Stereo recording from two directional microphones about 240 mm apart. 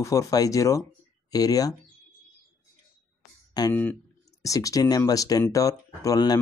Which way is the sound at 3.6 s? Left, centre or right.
Centre.